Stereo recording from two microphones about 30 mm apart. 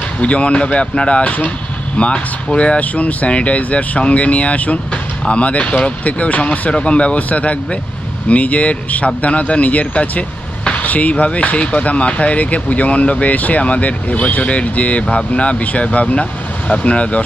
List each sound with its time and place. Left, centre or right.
0.2 s speech: left
2.8 s speech: left
3.3 s speech: left
6.7 s speech: left
15.6 s speech: left